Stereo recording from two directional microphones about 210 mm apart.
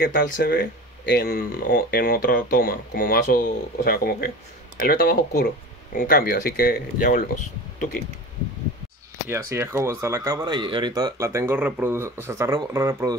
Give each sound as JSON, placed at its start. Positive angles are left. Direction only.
{"t": 0.0, "sound": "speech", "side_deg": 55}
{"t": 9.3, "sound": "speech", "side_deg": -10}